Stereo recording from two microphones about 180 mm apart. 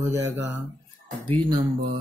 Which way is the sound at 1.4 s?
25° right (ahead or behind).